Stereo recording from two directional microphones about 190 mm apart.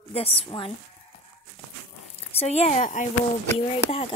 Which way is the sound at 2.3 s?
35° left (ahead or behind).